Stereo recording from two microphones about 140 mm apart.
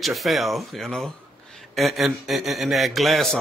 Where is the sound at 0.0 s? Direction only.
Centre (ahead or behind).